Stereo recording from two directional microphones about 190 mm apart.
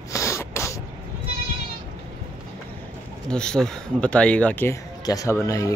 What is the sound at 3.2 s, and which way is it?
Speech, 5° left (ahead or behind).